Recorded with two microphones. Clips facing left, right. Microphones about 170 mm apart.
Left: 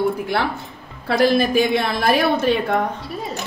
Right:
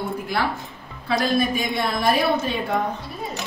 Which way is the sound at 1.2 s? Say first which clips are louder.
Left 7 dB; 80° left.